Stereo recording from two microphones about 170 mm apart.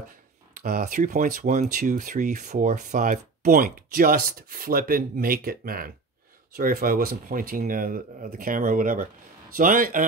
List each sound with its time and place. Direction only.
0.6 s speech: 55° right (ahead or behind)